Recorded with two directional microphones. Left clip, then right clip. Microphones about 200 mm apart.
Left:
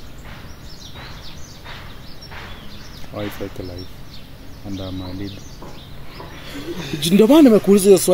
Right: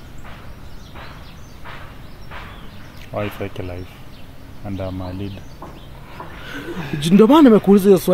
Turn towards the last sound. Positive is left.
turn(degrees=-35)  # may be behind; listen again after turning